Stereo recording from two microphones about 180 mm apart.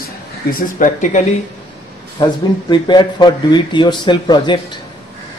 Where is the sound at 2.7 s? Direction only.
25° left (ahead or behind).